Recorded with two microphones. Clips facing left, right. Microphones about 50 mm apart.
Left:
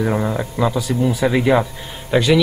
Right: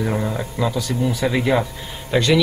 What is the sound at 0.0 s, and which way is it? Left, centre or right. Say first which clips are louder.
Speech: left 3 dB; centre.